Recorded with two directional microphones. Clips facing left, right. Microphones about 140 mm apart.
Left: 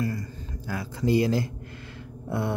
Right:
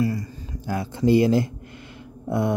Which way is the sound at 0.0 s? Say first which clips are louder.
Right 5 dB; 20° right (ahead or behind).